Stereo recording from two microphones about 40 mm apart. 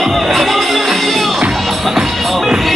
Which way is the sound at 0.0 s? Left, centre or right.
Centre.